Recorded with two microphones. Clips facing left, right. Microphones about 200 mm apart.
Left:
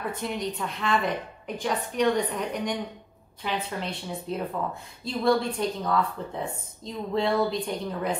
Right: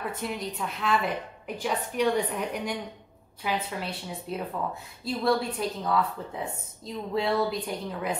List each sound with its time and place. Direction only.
0.1 s a woman's voice: 5° right (ahead or behind)